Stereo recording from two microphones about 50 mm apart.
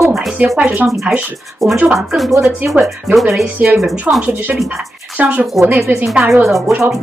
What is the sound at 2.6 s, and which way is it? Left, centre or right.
Speech, right.